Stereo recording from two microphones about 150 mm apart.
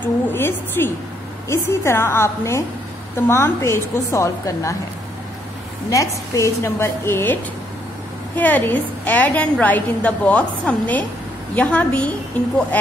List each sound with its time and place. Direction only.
0.3 s a woman's voice: 15° left (ahead or behind)
5.9 s a woman's voice: 20° left (ahead or behind)
8.4 s a woman's voice: 10° left (ahead or behind)